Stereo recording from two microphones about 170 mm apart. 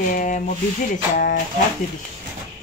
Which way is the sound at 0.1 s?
50° left (ahead or behind).